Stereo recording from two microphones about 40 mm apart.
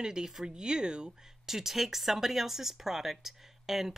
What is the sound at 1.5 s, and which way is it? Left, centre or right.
Speech, centre.